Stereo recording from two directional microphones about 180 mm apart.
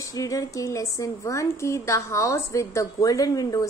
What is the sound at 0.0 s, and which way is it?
A woman's voice, 20° left (ahead or behind).